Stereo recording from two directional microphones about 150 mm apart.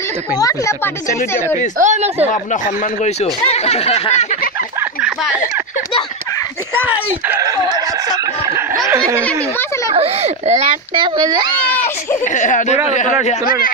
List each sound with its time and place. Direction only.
0.4 s speech: 20° left (ahead or behind)
1.8 s a child's voice: 50° right (ahead or behind)
3.5 s speech: 45° left (ahead or behind)
6.7 s speech: 15° right (ahead or behind)
9.9 s a child's voice: 45° right (ahead or behind)
11.0 s speech: 25° right (ahead or behind)
11.6 s speech: 10° left (ahead or behind)
12.4 s speech: 55° left (ahead or behind)